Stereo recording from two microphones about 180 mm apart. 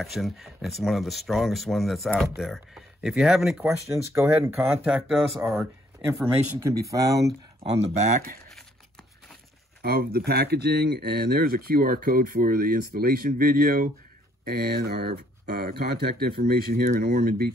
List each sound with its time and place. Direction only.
0.0 s speech: centre (ahead or behind)
6.9 s speech: 20° right (ahead or behind)
7.7 s speech: 35° right (ahead or behind)
9.8 s speech: 55° right (ahead or behind)